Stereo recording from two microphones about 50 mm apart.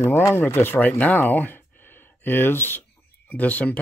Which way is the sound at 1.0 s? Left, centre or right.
Left.